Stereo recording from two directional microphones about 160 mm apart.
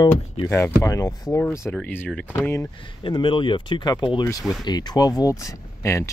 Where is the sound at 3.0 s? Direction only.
30° left (ahead or behind).